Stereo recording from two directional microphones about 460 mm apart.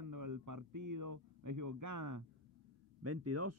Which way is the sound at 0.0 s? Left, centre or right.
Right.